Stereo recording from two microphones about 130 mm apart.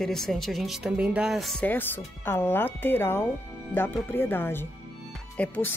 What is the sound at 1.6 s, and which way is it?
Speech, 15° left (ahead or behind).